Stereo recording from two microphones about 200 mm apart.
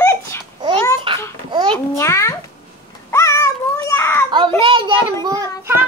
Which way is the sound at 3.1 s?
15° left (ahead or behind).